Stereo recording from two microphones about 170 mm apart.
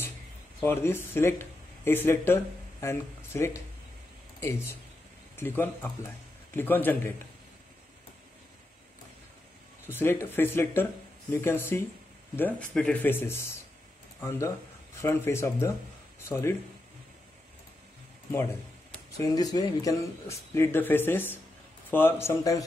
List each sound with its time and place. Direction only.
0.6 s speech: 15° left (ahead or behind)
9.8 s speech: 15° left (ahead or behind)
15.0 s speech: 15° left (ahead or behind)
19.1 s speech: 20° left (ahead or behind)